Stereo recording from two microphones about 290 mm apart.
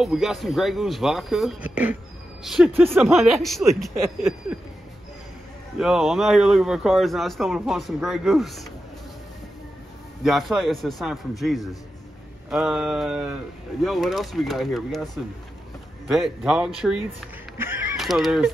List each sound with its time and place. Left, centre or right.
0.0 s a man's voice: centre
5.8 s a man's voice: centre
10.2 s a man's voice: centre
16.1 s a man's voice: centre
17.6 s a sound: centre